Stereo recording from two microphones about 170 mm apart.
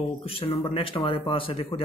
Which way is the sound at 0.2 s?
35° left (ahead or behind).